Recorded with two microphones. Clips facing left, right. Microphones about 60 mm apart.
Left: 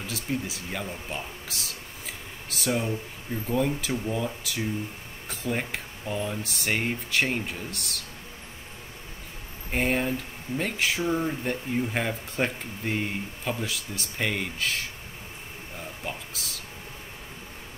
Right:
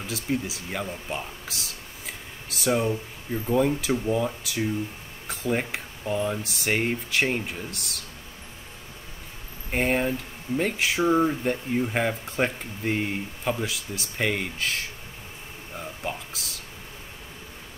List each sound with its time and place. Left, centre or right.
0.0 s speech: centre
9.7 s speech: centre
11.1 s speech: right
11.4 s speech: centre
16.0 s speech: centre